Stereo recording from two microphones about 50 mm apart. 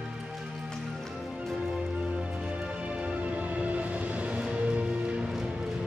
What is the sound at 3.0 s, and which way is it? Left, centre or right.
Music, right.